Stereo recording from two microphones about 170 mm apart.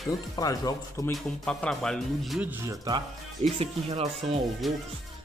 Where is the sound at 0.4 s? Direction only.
20° left (ahead or behind).